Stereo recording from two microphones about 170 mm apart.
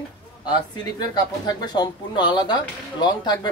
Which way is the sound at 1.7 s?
25° left (ahead or behind).